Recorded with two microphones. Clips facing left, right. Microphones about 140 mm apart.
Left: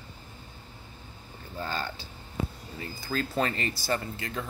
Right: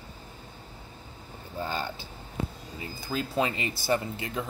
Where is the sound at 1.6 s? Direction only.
15° right (ahead or behind).